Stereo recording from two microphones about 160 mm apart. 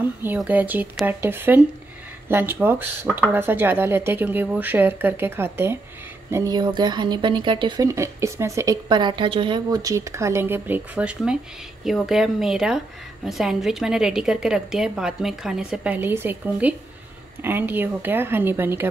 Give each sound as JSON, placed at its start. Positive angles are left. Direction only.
{"t": 0.0, "sound": "a woman's voice", "side_deg": -10}